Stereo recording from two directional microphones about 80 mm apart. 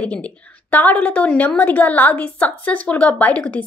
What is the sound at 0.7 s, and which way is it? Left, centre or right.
A woman's voice, centre.